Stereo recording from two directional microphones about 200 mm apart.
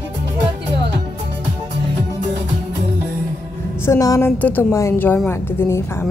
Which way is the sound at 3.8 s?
15° left (ahead or behind).